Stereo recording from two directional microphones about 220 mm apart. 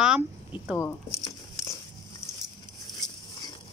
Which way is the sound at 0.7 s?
15° left (ahead or behind).